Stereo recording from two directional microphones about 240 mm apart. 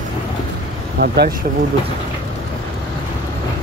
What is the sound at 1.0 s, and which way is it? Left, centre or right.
Speech, right.